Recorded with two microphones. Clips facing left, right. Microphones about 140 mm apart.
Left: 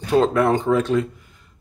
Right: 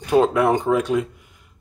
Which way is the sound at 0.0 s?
10° right (ahead or behind).